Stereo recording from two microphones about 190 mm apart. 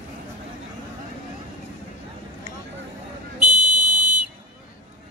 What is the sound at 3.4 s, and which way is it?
Buzzer, 40° right (ahead or behind).